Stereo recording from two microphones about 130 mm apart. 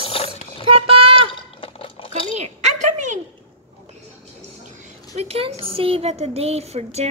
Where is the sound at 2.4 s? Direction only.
60° right (ahead or behind).